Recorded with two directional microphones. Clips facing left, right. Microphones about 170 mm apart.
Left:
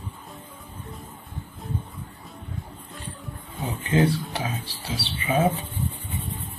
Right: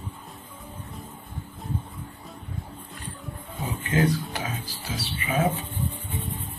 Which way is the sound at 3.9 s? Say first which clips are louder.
Left 2 dB; 30° left (ahead or behind).